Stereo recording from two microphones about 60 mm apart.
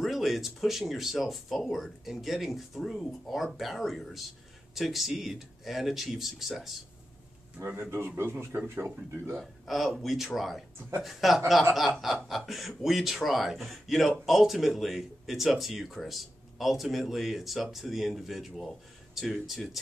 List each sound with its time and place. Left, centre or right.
0.0 s speech: centre
2.8 s speech: centre
7.9 s a man's voice: right
9.4 s speech: centre